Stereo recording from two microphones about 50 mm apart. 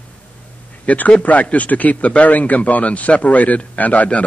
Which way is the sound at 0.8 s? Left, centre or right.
Left.